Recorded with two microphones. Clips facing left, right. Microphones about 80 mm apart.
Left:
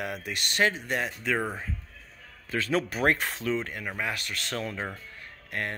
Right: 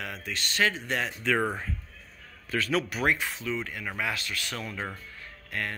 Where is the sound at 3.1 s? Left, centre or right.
Left.